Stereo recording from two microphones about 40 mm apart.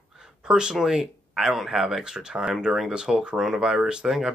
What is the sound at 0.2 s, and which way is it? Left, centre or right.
Speech, centre.